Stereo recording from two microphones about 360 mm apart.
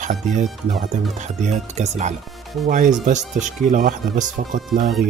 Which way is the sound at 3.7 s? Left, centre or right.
Right.